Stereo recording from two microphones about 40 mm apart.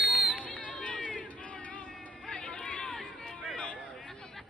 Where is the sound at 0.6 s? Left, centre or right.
Left.